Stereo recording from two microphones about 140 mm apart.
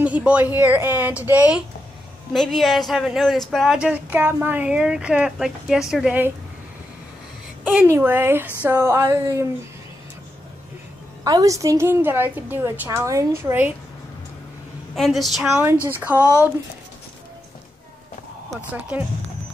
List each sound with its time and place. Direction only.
0.0 s a woman's voice: 10° right (ahead or behind)
2.3 s speech: centre (ahead or behind)
7.6 s a woman's voice: 10° right (ahead or behind)
11.2 s a woman's voice: 25° right (ahead or behind)
15.0 s speech: centre (ahead or behind)
16.0 s a woman's voice: 15° right (ahead or behind)
18.7 s a woman's voice: 10° right (ahead or behind)